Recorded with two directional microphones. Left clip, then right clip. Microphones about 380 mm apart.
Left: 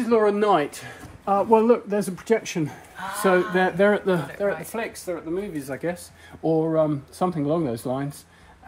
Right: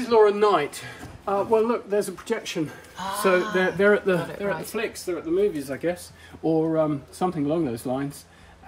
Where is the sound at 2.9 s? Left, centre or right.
Centre.